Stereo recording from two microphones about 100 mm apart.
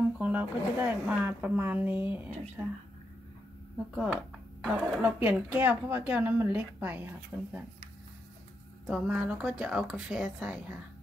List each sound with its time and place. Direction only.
0.2 s a woman's voice: 15° right (ahead or behind)
3.9 s a woman's voice: 15° right (ahead or behind)
8.8 s a woman's voice: 5° right (ahead or behind)